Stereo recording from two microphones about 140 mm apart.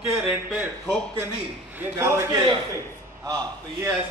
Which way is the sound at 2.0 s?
20° right (ahead or behind).